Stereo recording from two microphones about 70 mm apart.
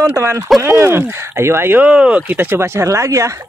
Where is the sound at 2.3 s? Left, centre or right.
Right.